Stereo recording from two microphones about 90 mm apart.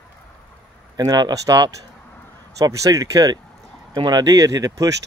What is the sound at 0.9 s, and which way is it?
Speech, 50° right (ahead or behind).